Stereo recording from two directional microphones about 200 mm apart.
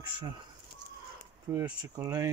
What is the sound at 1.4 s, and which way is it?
Speech, 15° right (ahead or behind).